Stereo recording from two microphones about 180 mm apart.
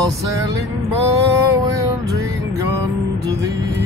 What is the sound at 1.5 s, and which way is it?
Music, 20° right (ahead or behind).